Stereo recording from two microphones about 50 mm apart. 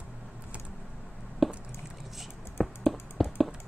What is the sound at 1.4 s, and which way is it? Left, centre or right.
Chop, centre.